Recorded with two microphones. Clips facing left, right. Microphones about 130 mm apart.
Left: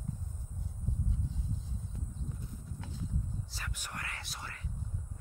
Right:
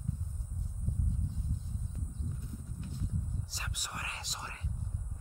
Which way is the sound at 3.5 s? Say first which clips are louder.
Even; 15° right (ahead or behind).